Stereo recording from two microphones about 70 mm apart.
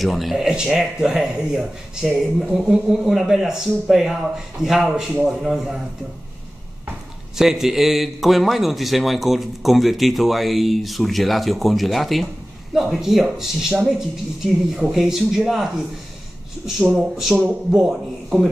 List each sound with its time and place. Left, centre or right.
0.0 s a man's voice: centre
7.3 s a man's voice: centre
16.8 s speech: centre